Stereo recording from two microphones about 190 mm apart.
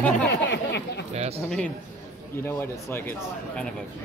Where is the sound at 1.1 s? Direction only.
35° right (ahead or behind).